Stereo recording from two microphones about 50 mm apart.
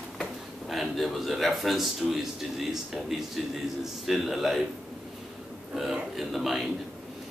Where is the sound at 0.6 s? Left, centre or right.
Centre.